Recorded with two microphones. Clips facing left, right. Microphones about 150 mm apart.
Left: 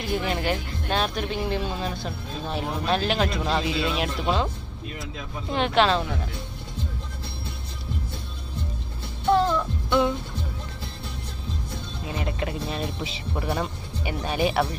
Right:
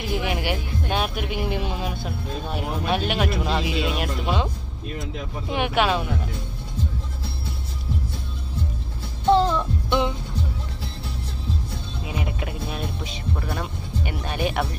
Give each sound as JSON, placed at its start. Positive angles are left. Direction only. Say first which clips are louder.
{"t": 0.0, "sound": "speech", "louder": "even", "side_deg": -5}
{"t": 2.0, "sound": "speech", "louder": "right 2 dB", "side_deg": -5}
{"t": 4.9, "sound": "speech", "louder": "right 4 dB", "side_deg": -20}
{"t": 9.3, "sound": "music", "louder": "right 2 dB", "side_deg": -20}
{"t": 12.1, "sound": "music", "louder": "left 1 dB", "side_deg": -10}
{"t": 13.4, "sound": "speech", "louder": "left 2 dB", "side_deg": 5}